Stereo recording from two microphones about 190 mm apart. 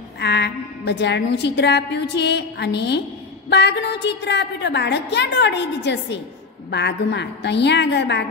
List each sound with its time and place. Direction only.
0.2 s a woman's voice: 60° left (ahead or behind)